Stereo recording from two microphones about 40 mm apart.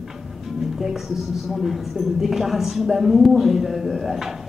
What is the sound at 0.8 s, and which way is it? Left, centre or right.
Speech, centre.